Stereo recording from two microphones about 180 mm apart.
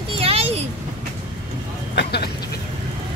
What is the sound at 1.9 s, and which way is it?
Speech, 65° left (ahead or behind).